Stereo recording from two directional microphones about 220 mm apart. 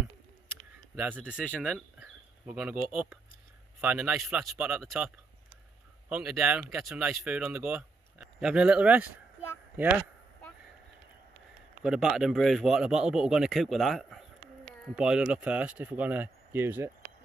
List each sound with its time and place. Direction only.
0.9 s speech: 10° right (ahead or behind)
11.8 s speech: centre (ahead or behind)